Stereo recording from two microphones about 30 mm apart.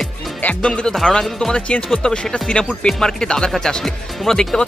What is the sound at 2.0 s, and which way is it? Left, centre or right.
Speech, centre.